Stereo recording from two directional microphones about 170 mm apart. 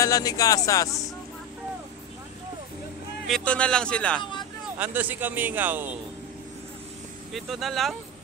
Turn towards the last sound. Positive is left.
turn(degrees=0)  # may be behind; listen again after turning